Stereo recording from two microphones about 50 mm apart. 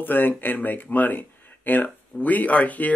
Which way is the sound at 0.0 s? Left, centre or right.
Left.